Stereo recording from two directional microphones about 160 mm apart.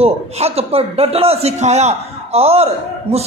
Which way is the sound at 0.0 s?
40° right (ahead or behind).